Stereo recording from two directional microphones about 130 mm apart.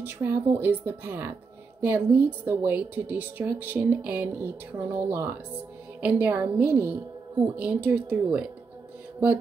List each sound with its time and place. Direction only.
0.0 s a woman's voice: 20° right (ahead or behind)